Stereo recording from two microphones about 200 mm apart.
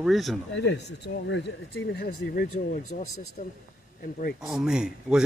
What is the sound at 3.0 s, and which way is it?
Speech, 90° left.